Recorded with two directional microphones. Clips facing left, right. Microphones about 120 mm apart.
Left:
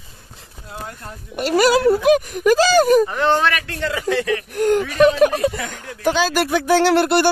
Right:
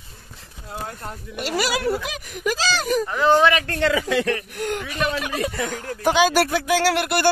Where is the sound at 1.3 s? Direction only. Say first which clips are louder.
Left 9 dB; 50° left (ahead or behind).